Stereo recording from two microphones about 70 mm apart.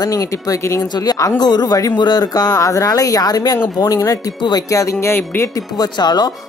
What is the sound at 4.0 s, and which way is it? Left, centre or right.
Speech, left.